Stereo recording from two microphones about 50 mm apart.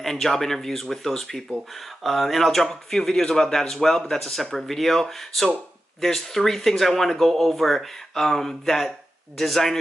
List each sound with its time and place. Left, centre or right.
0.0 s speech: centre